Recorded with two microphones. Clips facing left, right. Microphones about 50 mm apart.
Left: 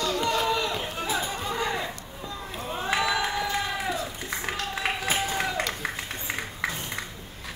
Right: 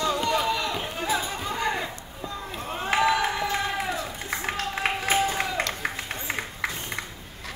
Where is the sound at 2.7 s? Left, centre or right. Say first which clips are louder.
Right 3 dB; right.